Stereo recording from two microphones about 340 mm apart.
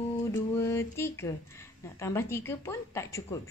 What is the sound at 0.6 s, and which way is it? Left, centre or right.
Speech, centre.